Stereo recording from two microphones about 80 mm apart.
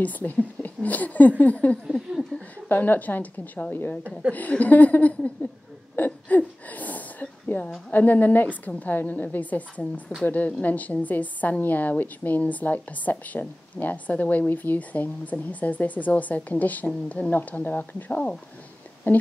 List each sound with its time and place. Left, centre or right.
0.0 s a woman's voice: left
1.9 s speech: centre
2.7 s a woman's voice: left
5.9 s a sound: left
7.9 s a woman's voice: left